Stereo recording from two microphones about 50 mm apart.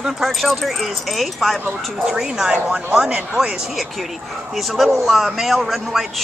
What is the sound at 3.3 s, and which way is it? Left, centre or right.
Speech, centre.